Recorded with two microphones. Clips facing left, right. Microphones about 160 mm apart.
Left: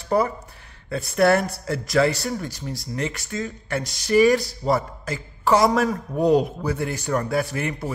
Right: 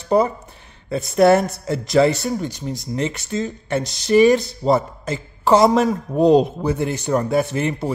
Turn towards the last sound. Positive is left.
turn(degrees=-25)  # may be behind; listen again after turning